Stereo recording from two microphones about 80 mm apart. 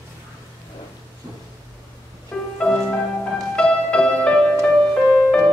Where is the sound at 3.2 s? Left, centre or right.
Centre.